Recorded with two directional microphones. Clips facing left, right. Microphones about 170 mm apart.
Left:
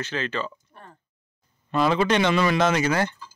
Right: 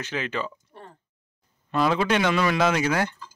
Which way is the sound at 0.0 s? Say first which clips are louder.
Left 1 dB; 15° right (ahead or behind).